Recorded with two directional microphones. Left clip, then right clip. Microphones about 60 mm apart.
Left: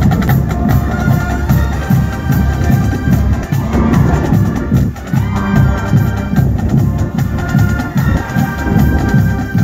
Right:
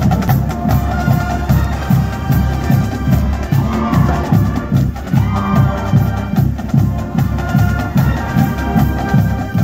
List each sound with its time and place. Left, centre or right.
0.0 s music: centre
7.5 s music: centre